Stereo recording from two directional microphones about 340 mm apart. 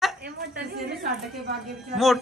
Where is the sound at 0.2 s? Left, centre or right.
Right.